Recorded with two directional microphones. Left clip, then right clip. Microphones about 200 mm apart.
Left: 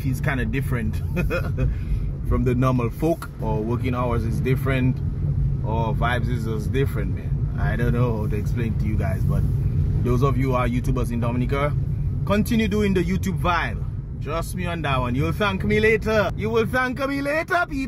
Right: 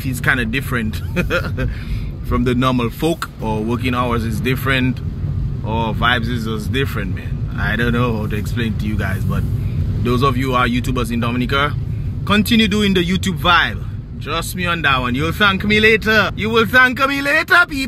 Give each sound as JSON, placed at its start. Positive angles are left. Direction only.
{"t": 0.2, "sound": "speech", "side_deg": 5}
{"t": 10.0, "sound": "speech", "side_deg": 5}